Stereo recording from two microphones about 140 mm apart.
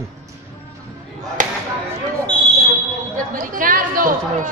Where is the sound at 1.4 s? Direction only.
70° right (ahead or behind).